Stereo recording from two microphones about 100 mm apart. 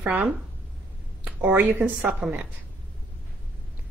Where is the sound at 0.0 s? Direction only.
20° right (ahead or behind).